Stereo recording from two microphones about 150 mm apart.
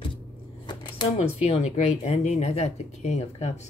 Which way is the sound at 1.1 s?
45° left (ahead or behind).